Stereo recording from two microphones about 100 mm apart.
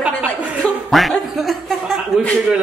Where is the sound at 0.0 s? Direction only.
15° right (ahead or behind).